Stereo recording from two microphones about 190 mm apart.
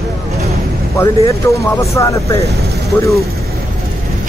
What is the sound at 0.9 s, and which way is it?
Speech, 15° left (ahead or behind).